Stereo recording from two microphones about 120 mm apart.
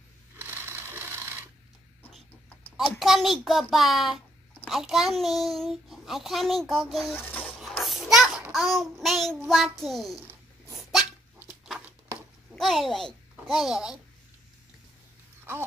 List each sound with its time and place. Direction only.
0.4 s wood: 20° right (ahead or behind)
2.8 s a child's voice: centre (ahead or behind)
7.2 s a sound: 15° left (ahead or behind)
7.7 s child singing: centre (ahead or behind)
9.5 s a child's voice: centre (ahead or behind)
12.5 s a child's voice: centre (ahead or behind)